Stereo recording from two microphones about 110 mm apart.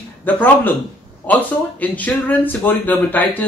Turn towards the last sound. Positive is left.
turn(degrees=15)  # may be behind; listen again after turning